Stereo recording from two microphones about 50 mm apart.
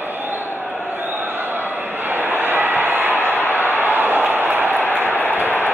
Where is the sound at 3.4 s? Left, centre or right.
Left.